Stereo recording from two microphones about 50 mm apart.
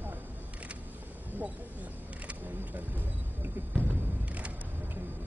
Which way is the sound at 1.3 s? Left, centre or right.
Right.